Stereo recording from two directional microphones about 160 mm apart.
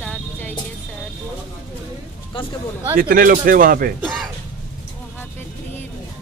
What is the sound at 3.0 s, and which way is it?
Speech, 60° right (ahead or behind).